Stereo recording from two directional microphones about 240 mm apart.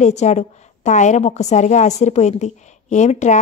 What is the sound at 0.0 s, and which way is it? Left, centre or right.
A woman's voice, left.